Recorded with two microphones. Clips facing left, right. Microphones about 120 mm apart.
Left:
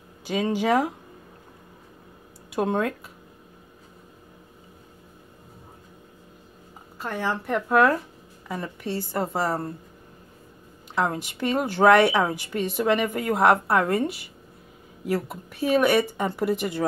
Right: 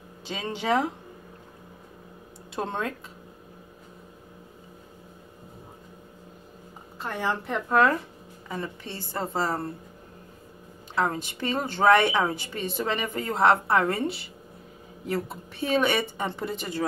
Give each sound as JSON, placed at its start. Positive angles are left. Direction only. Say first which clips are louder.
{"t": 0.2, "sound": "a woman's voice", "louder": "left 8 dB", "side_deg": 10}
{"t": 2.5, "sound": "a woman's voice", "louder": "left 6 dB", "side_deg": 10}
{"t": 7.0, "sound": "a woman's voice", "louder": "left 1 dB", "side_deg": 5}
{"t": 8.8, "sound": "a woman's voice", "louder": "left 9 dB", "side_deg": -20}
{"t": 9.1, "sound": "a woman's voice", "louder": "left 1 dB", "side_deg": 15}
{"t": 11.0, "sound": "a woman's voice", "louder": "left 1 dB", "side_deg": 15}
{"t": 15.0, "sound": "a woman's voice", "louder": "left 3 dB", "side_deg": 5}